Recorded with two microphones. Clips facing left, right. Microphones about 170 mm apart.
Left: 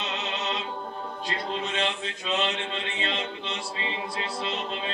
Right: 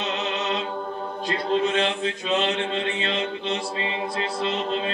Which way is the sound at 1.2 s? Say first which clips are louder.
Right 9 dB; 50° right (ahead or behind).